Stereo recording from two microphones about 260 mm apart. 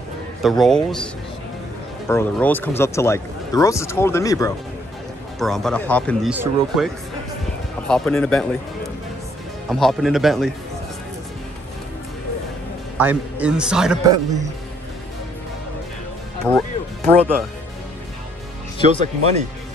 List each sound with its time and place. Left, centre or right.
0.4 s a man's voice: centre
5.4 s a man's voice: centre
6.3 s speech: centre
7.9 s a man's voice: centre
9.7 s a man's voice: centre
12.9 s a man's voice: centre
16.4 s music: centre
18.9 s speech: right